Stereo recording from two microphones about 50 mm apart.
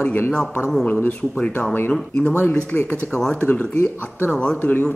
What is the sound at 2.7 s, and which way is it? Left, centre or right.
Speech, left.